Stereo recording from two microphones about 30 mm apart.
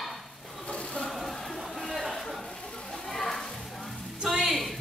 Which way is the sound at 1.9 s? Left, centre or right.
Centre.